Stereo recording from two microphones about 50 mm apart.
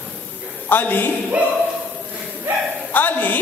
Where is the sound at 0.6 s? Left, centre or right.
Left.